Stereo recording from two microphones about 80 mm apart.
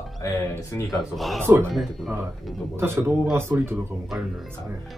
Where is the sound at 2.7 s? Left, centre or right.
Right.